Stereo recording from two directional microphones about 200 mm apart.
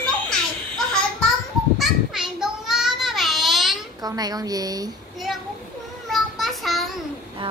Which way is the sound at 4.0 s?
20° right (ahead or behind).